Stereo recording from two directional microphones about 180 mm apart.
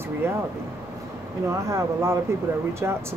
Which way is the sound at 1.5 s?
15° right (ahead or behind).